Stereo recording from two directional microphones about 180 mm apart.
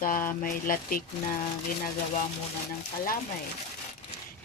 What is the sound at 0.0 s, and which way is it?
Speech, 50° left (ahead or behind).